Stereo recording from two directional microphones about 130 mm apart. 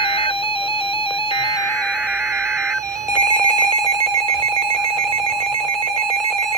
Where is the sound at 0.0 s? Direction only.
45° left (ahead or behind).